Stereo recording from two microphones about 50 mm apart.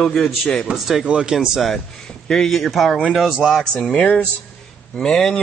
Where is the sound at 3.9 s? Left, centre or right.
Left.